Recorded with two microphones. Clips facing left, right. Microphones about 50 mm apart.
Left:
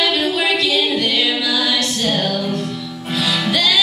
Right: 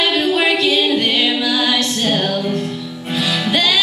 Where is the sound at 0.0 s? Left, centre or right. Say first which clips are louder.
Right 2 dB; right.